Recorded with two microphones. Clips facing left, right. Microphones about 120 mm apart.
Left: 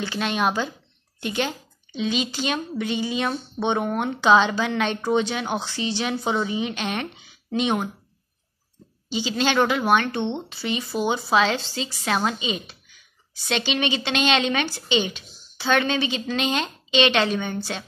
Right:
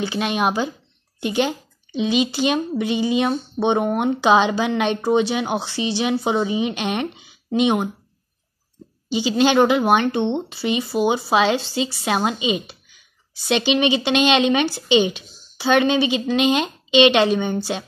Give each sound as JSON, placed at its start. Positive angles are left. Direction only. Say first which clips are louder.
{"t": 0.0, "sound": "speech", "louder": "right 3 dB", "side_deg": -10}
{"t": 9.4, "sound": "speech", "louder": "right 6 dB", "side_deg": -20}